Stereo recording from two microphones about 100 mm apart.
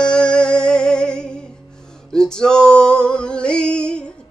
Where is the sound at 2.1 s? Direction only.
5° left (ahead or behind).